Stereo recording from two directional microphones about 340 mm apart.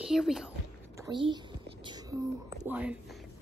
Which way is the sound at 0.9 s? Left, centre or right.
Centre.